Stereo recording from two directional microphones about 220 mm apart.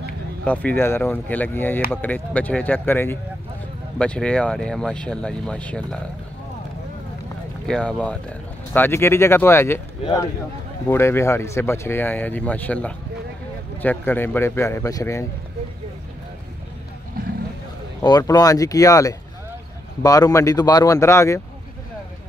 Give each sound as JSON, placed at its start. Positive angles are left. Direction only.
{"t": 0.5, "sound": "speech", "side_deg": 5}
{"t": 7.6, "sound": "speech", "side_deg": 5}
{"t": 18.0, "sound": "speech", "side_deg": 20}